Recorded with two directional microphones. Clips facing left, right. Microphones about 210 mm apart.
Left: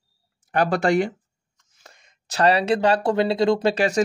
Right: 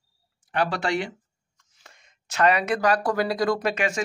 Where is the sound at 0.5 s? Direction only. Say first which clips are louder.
Left 6 dB; 45° left (ahead or behind).